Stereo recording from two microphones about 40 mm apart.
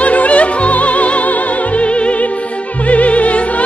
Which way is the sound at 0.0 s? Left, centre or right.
Left.